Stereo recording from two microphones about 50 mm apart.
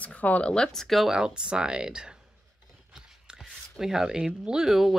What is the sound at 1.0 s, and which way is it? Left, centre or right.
Speech, centre.